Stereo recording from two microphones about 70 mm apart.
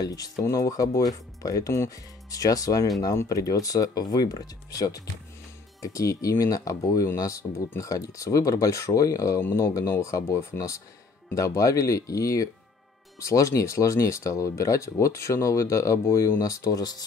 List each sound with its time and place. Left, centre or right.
0.0 s speech: left
9.4 s speech: left
9.7 s speech: left
10.2 s speech: left
11.3 s speech: left